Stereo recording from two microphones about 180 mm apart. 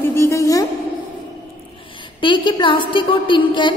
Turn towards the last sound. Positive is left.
turn(degrees=25)  # may be behind; listen again after turning